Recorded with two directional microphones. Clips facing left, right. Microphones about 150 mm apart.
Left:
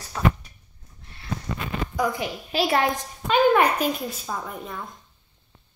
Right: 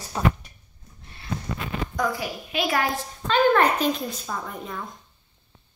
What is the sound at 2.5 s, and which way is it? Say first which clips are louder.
Speech: left 3 dB; 35° left (ahead or behind).